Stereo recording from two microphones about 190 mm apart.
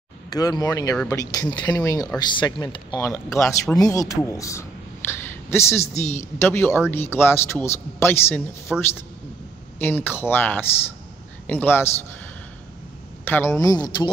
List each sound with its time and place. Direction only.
0.3 s a man's voice: 20° left (ahead or behind)
5.8 s a man's voice: 40° left (ahead or behind)
6.3 s a man's voice: 15° left (ahead or behind)
8.7 s speech: centre (ahead or behind)
9.8 s a man's voice: 10° left (ahead or behind)
13.2 s a man's voice: 10° left (ahead or behind)